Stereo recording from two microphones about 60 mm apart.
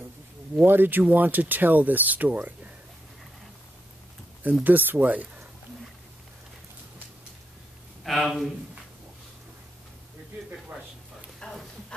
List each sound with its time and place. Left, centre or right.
0.7 s speech: right
4.6 s speech: right
8.0 s speech: centre
11.4 s a sound: centre